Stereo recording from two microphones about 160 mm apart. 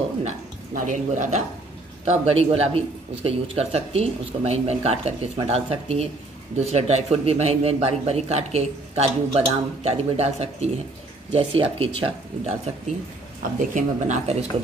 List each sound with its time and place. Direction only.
0.7 s speech: 50° right (ahead or behind)
2.0 s speech: 40° right (ahead or behind)
13.4 s speech: 55° right (ahead or behind)